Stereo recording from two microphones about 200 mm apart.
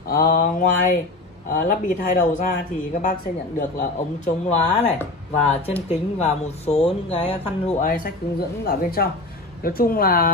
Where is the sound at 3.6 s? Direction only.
40° left (ahead or behind).